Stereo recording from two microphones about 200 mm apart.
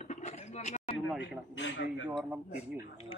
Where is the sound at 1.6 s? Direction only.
65° left (ahead or behind).